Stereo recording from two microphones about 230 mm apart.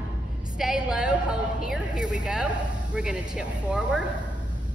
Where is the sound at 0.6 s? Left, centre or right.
Centre.